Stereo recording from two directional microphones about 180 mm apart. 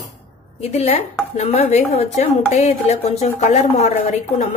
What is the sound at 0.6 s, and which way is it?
A woman's voice, 35° left (ahead or behind).